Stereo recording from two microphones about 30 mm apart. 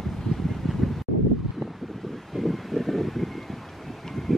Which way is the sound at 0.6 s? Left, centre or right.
Centre.